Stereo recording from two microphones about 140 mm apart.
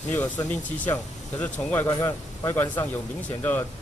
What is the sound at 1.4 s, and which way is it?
Speech, 10° left (ahead or behind).